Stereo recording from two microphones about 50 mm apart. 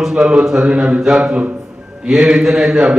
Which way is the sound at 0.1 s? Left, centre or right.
Right.